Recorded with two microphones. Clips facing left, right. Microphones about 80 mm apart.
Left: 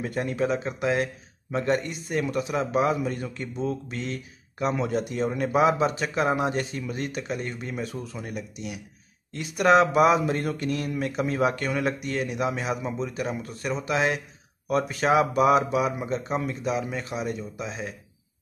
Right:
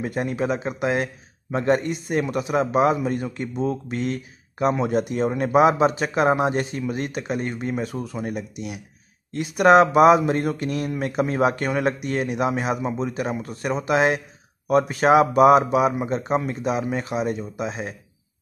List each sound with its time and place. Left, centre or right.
0.0 s speech: centre
3.6 s speech: right
15.0 s speech: right